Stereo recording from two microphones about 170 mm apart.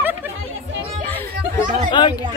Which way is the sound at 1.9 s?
25° left (ahead or behind).